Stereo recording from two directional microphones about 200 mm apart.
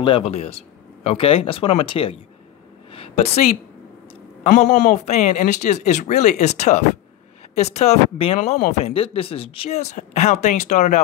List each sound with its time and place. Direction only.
0.0 s a man's voice: 30° left (ahead or behind)
2.9 s a sound: 30° left (ahead or behind)
4.4 s a man's voice: 35° left (ahead or behind)